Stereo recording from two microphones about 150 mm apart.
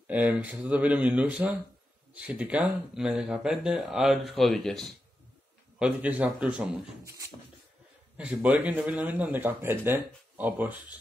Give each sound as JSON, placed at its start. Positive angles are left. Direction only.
{"t": 0.0, "sound": "speech", "side_deg": -10}
{"t": 5.8, "sound": "speech", "side_deg": -10}
{"t": 7.1, "sound": "beatboxing", "side_deg": -20}
{"t": 8.2, "sound": "speech", "side_deg": -10}